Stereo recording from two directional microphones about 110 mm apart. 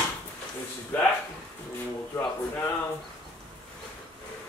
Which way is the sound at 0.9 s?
15° left (ahead or behind).